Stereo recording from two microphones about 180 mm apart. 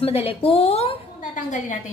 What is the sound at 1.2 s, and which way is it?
Speech, 45° left (ahead or behind).